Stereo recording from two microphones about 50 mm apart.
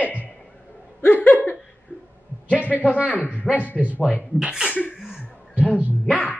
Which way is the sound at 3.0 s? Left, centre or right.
Left.